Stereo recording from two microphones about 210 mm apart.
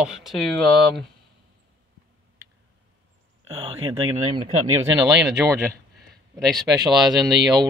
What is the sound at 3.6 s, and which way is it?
Speech, 25° right (ahead or behind).